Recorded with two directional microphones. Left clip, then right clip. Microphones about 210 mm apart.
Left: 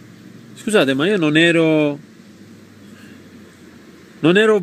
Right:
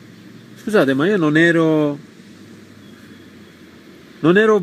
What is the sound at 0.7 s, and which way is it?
Speech, 25° left (ahead or behind).